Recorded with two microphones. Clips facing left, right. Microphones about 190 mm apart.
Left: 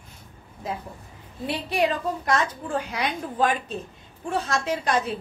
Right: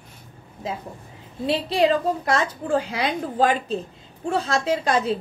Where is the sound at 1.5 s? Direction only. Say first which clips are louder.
Right 5 dB; 25° right (ahead or behind).